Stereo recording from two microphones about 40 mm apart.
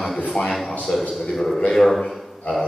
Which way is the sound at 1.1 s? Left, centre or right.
Centre.